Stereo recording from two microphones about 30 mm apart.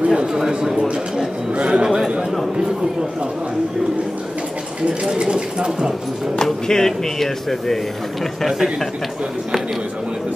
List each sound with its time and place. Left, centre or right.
0.1 s speech: right
1.5 s speech: right
1.9 s speech: centre
5.0 s speech: right
6.3 s speech: centre